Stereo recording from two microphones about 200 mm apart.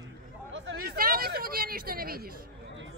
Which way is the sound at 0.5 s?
60° right (ahead or behind).